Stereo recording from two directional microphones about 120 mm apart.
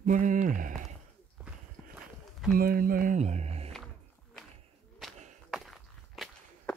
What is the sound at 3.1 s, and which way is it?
Speech, 70° right (ahead or behind).